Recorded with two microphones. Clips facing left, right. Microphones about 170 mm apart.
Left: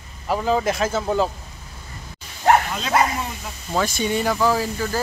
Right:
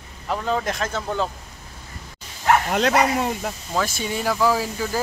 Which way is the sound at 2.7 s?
60° right (ahead or behind).